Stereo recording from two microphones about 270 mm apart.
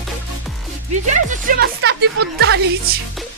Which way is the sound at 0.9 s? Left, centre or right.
Right.